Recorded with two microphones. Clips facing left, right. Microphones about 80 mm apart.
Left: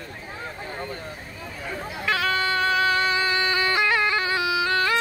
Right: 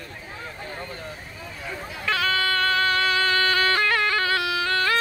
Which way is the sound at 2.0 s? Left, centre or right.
Centre.